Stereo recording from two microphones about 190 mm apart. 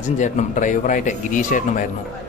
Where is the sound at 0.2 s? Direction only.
40° left (ahead or behind).